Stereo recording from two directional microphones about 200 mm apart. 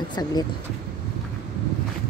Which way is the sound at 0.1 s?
20° left (ahead or behind).